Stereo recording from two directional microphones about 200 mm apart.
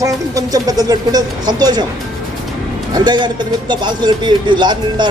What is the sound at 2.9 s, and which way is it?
Speech, 20° right (ahead or behind).